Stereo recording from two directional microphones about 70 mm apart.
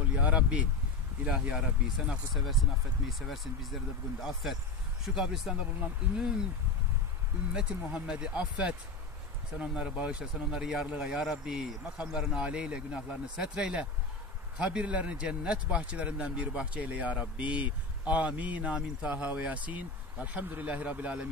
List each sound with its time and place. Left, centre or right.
0.1 s a sound: centre
1.2 s speech: centre
7.5 s speech: centre